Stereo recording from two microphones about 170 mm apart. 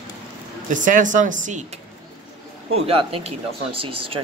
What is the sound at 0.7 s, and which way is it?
Speech, 50° right (ahead or behind).